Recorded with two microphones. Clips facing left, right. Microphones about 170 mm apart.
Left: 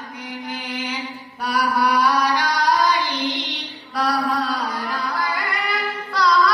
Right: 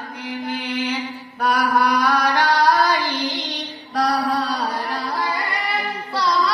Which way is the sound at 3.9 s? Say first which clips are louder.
Right 2 dB; 40° right (ahead or behind).